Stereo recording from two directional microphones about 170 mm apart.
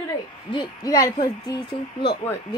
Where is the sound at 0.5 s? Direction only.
25° left (ahead or behind).